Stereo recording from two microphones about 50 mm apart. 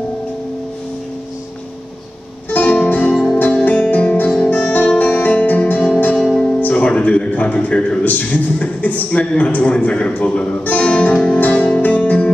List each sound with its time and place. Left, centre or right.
2.5 s music: left
6.2 s music: centre
6.7 s a sound: left
8.0 s a man's voice: left